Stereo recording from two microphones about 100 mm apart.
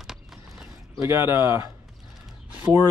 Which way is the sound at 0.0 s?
5° right (ahead or behind).